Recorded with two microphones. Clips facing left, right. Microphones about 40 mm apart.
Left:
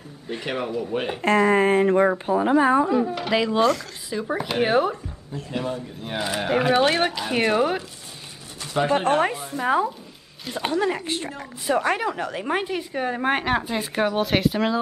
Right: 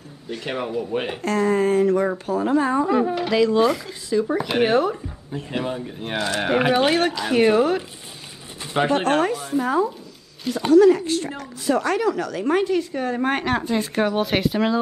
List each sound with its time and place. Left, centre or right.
0.5 s speech: centre
1.2 s speech: left
2.9 s a man's voice: right
3.3 s speech: centre
5.3 s a man's voice: right
6.1 s speech: centre
6.7 s speech: centre
7.0 s speech: centre
8.8 s speech: right
9.2 s a sound: left
9.6 s speech: left; by 14.8 s centre